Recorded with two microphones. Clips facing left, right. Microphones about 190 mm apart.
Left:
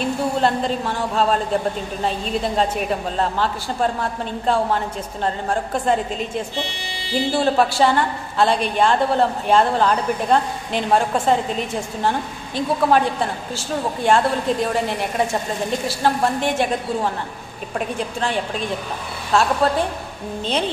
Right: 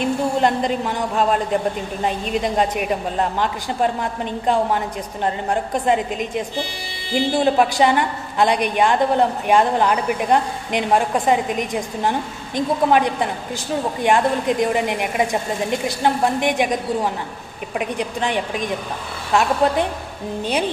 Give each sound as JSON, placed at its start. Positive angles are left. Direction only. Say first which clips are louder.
{"t": 0.0, "sound": "a woman's voice", "louder": "right 1 dB", "side_deg": -15}